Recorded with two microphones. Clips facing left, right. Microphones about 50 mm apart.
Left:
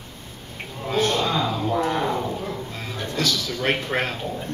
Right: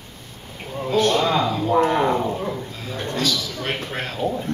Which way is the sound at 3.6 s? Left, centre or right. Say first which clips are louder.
Left 6 dB; left.